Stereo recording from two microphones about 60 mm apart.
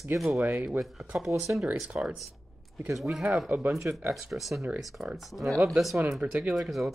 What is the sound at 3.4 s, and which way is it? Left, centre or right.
Speech, right.